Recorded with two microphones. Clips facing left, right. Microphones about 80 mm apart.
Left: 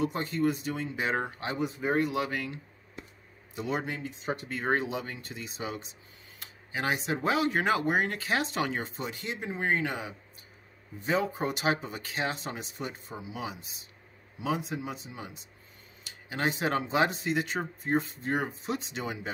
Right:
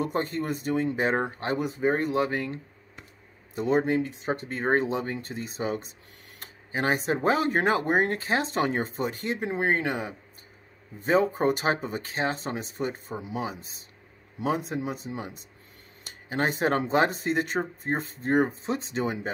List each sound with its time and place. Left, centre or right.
0.0 s speech: right
4.3 s speech: right